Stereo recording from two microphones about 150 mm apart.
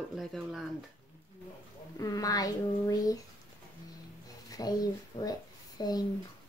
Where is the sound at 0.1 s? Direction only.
Centre (ahead or behind).